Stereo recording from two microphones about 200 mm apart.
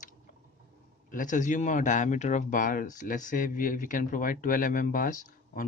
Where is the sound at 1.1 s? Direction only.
40° left (ahead or behind).